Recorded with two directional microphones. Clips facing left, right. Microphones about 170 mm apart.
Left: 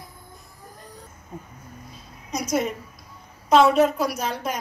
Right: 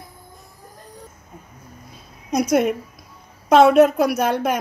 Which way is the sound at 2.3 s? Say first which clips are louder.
Right 7 dB; 60° right (ahead or behind).